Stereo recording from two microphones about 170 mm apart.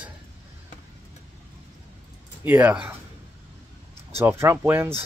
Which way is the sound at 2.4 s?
10° right (ahead or behind).